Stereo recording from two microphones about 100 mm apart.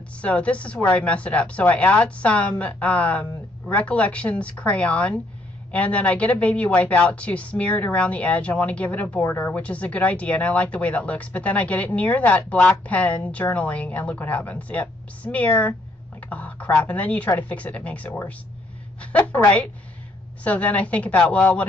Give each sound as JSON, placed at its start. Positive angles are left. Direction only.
{"t": 0.2, "sound": "a woman's voice", "side_deg": 10}